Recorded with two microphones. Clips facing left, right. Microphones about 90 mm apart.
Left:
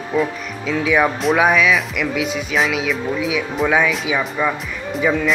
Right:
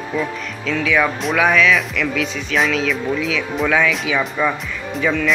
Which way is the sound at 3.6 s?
20° left (ahead or behind).